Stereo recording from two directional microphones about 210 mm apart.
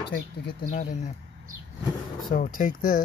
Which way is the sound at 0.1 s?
50° left (ahead or behind).